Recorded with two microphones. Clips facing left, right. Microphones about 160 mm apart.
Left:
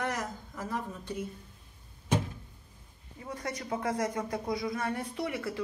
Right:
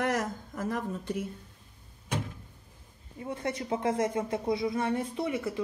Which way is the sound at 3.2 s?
25° right (ahead or behind).